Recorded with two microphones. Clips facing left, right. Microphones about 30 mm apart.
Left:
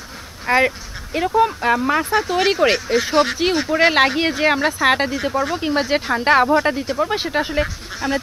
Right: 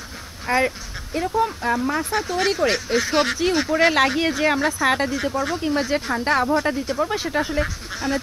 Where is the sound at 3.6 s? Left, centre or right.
Centre; by 6.4 s left.